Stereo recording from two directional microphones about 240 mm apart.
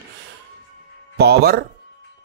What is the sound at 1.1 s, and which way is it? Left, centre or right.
Speech, right.